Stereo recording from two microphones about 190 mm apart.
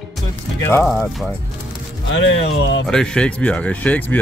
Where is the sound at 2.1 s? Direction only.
75° left (ahead or behind).